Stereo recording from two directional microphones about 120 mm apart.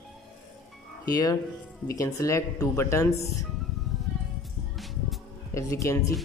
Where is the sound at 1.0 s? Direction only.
30° left (ahead or behind).